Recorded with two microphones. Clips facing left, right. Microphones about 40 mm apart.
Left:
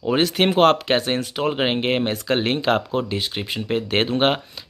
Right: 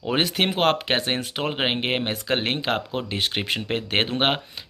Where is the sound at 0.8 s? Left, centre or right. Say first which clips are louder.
Left 3 dB; right.